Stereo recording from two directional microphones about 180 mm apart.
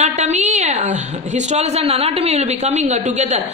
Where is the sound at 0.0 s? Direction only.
40° right (ahead or behind).